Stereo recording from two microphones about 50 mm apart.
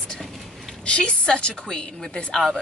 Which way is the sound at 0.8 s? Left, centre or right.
Centre.